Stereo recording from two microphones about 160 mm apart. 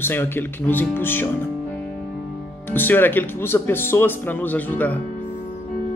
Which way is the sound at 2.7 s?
10° left (ahead or behind).